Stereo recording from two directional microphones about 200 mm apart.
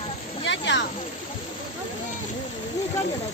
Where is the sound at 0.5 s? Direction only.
65° left (ahead or behind).